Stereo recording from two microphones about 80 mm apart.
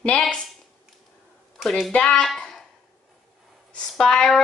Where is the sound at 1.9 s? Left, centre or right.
Centre.